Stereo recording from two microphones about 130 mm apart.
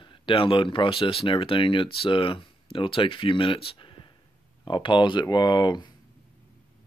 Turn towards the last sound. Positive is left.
turn(degrees=35)  # may be behind; listen again after turning